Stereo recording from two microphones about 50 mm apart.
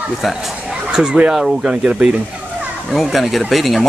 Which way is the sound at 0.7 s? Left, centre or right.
Centre.